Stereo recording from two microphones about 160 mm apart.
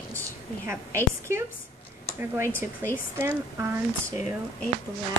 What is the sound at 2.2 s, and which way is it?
Speech, 15° right (ahead or behind).